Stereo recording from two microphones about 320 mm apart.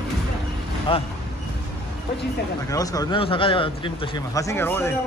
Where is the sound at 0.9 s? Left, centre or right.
Centre.